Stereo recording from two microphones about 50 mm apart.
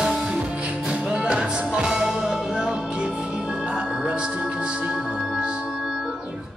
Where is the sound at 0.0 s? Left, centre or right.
Centre.